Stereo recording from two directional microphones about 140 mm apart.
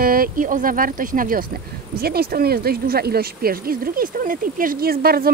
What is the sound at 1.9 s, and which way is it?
Speech, 90° right.